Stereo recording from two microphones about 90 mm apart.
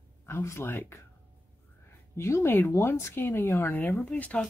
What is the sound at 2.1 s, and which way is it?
Speech, 30° left (ahead or behind).